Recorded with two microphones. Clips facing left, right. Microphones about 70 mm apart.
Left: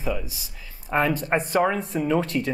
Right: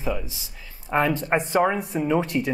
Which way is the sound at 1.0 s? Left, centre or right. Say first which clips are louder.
Right 1 dB; centre.